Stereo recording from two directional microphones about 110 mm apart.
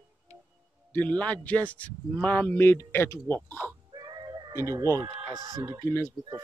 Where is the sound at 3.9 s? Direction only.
35° right (ahead or behind).